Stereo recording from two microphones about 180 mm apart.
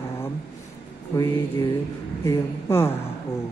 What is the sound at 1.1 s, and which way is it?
Speech, 10° left (ahead or behind).